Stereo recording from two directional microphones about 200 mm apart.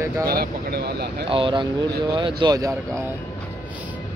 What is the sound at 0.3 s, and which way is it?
Speech, 50° right (ahead or behind).